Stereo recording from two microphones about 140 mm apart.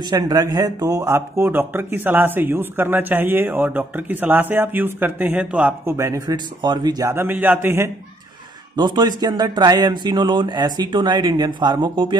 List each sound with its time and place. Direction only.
0.0 s speech: 25° right (ahead or behind)
7.1 s speech: 15° right (ahead or behind)
8.7 s speech: 30° right (ahead or behind)